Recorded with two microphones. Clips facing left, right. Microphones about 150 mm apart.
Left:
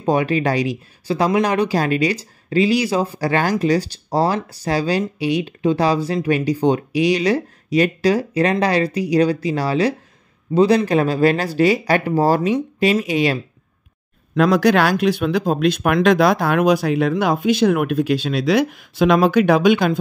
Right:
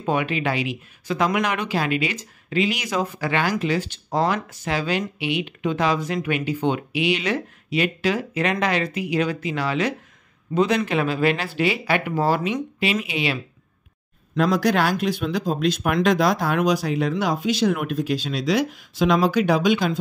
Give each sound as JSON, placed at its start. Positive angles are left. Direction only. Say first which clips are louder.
{"t": 0.0, "sound": "speech", "louder": "left 5 dB", "side_deg": 35}
{"t": 14.3, "sound": "speech", "louder": "left 5 dB", "side_deg": 70}